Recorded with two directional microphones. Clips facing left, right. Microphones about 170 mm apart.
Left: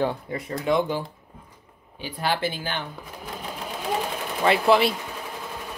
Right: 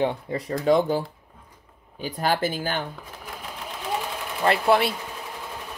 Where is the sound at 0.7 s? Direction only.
40° right (ahead or behind).